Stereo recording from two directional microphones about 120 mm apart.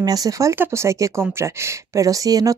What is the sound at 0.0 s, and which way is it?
Speech, 30° right (ahead or behind).